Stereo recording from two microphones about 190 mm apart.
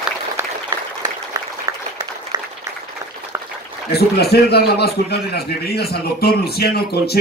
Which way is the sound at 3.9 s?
55° left (ahead or behind).